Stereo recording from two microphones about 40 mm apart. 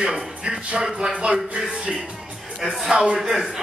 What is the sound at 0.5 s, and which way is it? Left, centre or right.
Speech, right.